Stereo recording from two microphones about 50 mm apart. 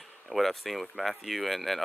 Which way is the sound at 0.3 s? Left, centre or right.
Centre.